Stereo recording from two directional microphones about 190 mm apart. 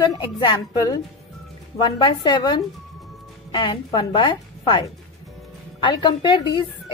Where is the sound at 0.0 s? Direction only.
20° left (ahead or behind).